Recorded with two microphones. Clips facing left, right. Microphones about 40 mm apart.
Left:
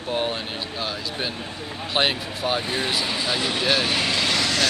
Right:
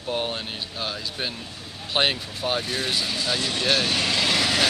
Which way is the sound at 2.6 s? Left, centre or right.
Centre.